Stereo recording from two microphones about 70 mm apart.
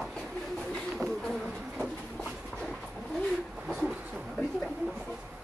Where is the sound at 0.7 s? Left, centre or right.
Centre.